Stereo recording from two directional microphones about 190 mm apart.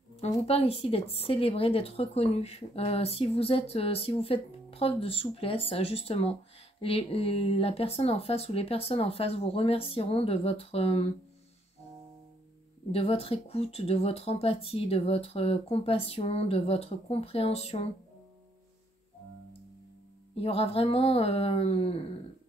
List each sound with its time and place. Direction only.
0.1 s a woman's voice: 30° left (ahead or behind)
12.9 s a woman's voice: 30° left (ahead or behind)
20.3 s a woman's voice: 30° left (ahead or behind)